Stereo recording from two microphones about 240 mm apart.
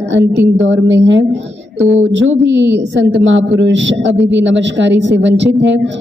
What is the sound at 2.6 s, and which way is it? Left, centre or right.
Speech, centre.